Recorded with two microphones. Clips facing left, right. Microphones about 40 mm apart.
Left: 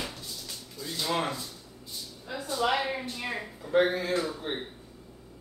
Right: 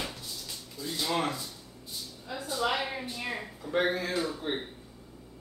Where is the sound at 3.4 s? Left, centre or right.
Centre.